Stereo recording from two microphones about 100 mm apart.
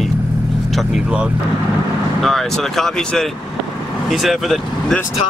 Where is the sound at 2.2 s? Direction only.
5° left (ahead or behind).